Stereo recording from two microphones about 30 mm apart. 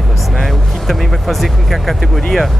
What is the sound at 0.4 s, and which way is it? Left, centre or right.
Speech, centre.